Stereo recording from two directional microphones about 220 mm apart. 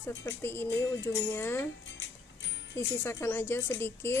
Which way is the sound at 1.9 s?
55° left (ahead or behind).